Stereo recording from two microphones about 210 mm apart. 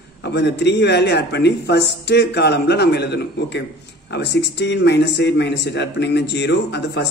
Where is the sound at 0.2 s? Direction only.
55° left (ahead or behind).